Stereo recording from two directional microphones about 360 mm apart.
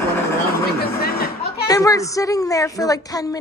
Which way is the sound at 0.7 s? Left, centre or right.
Left.